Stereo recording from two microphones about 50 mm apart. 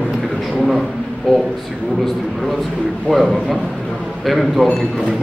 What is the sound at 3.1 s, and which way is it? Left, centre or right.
Speech, centre.